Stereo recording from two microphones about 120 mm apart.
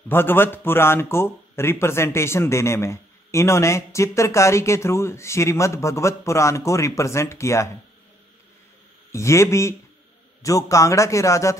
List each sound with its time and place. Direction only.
0.1 s speech: 20° left (ahead or behind)
9.1 s speech: 25° left (ahead or behind)